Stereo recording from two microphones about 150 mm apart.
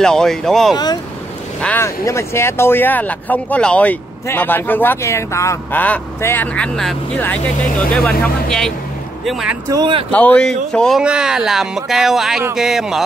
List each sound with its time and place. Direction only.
0.0 s speech: 5° left (ahead or behind)
1.6 s speech: 15° left (ahead or behind); by 9.6 s centre (ahead or behind)
9.7 s speech: 25° right (ahead or behind)
10.1 s speech: 10° left (ahead or behind)